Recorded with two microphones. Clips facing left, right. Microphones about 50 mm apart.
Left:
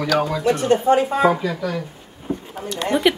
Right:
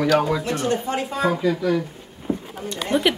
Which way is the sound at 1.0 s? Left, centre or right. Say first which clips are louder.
Left 5 dB; left.